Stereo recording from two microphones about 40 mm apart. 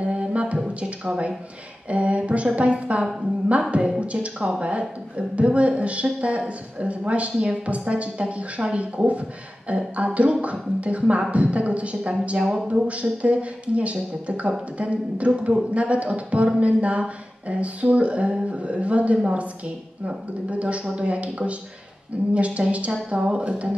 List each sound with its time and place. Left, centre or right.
0.0 s music: right
0.7 s a woman's voice: right
4.0 s a woman's voice: right